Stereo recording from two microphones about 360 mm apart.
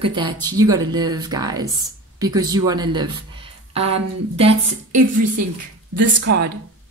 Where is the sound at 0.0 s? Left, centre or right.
Centre.